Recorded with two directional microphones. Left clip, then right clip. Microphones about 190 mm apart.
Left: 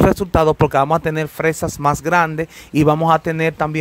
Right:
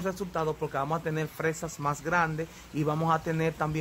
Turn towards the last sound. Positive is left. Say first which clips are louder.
# left 11 dB
turn(degrees=40)  # may be behind; listen again after turning